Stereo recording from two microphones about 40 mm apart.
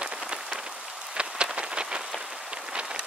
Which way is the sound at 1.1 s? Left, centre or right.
Right.